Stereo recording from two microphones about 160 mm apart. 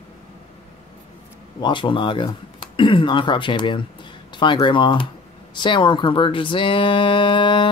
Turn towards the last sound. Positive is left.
turn(degrees=30)  # may be behind; listen again after turning